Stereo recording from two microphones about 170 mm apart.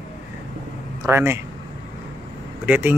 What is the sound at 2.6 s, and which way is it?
Mantra, 10° right (ahead or behind).